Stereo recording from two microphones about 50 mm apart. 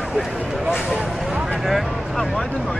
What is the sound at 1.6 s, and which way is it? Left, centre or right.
Vehicle, centre.